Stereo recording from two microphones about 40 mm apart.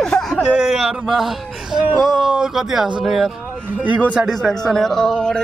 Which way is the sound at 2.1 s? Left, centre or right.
Centre.